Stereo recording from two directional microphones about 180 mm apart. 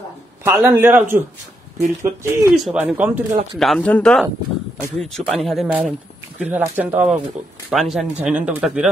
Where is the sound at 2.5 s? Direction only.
5° right (ahead or behind).